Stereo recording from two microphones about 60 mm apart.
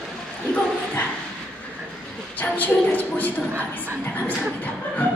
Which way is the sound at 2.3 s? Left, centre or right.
Left.